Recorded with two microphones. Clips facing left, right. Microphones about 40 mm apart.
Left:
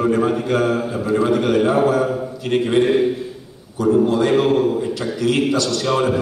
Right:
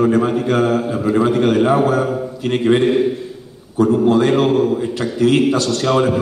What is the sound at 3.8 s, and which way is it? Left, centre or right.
Speech, right.